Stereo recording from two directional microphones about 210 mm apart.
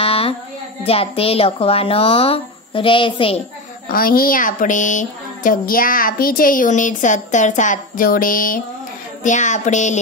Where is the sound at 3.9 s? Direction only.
45° left (ahead or behind).